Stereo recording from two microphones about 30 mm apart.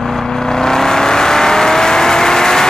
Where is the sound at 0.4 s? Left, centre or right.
Centre.